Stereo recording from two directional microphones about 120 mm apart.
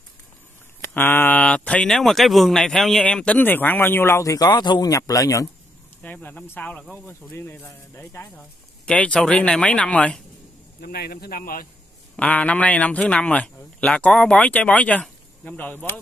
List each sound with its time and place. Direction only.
0.7 s speech: 20° left (ahead or behind)
6.0 s speech: 15° left (ahead or behind)
8.4 s speech: 10° left (ahead or behind)
12.2 s speech: 10° left (ahead or behind)